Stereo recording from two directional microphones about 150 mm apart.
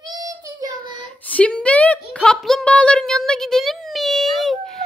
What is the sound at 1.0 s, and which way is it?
Speech, 10° left (ahead or behind).